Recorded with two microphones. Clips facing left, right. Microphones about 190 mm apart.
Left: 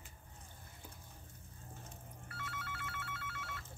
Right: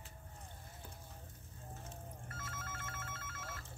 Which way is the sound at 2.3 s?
40° right (ahead or behind).